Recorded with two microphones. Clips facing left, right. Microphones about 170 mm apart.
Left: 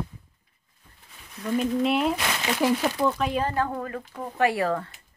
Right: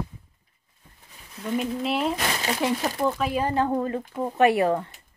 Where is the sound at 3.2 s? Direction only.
10° right (ahead or behind).